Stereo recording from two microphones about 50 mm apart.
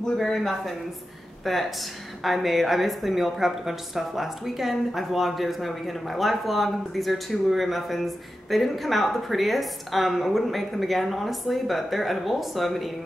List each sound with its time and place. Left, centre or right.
0.0 s a woman's voice: centre